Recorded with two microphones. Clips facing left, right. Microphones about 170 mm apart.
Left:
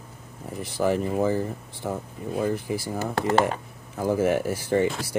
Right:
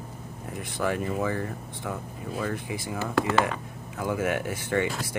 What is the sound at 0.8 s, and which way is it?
Speech, 30° left (ahead or behind).